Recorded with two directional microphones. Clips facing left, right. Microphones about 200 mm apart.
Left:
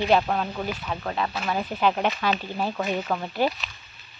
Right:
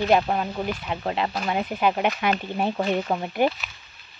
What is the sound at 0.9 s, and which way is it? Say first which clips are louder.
Speech: right 2 dB; 25° right (ahead or behind).